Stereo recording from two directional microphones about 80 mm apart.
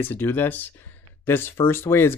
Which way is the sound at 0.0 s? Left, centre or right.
Left.